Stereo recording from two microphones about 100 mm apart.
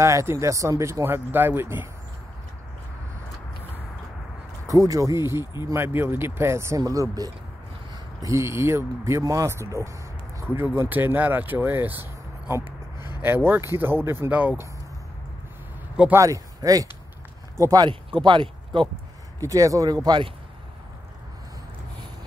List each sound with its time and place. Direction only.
0.0 s speech: 30° right (ahead or behind)
4.6 s speech: 35° right (ahead or behind); by 14.6 s 15° right (ahead or behind)
16.1 s speech: 30° right (ahead or behind)
17.8 s speech: 50° right (ahead or behind)
19.4 s speech: 35° right (ahead or behind)